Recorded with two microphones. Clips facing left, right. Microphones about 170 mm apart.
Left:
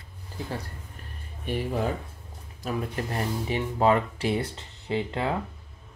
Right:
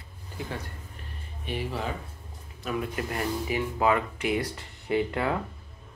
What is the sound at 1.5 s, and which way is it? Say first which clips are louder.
Speech: left 3 dB; 45° left (ahead or behind).